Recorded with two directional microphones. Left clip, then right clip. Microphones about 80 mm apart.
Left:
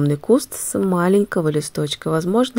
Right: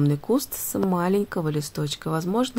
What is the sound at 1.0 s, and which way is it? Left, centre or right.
Speech, left.